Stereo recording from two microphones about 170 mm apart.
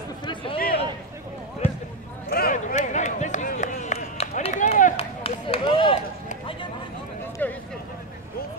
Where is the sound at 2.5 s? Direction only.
45° left (ahead or behind).